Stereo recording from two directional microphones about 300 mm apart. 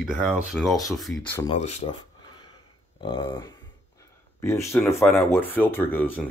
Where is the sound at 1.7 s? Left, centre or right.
Centre.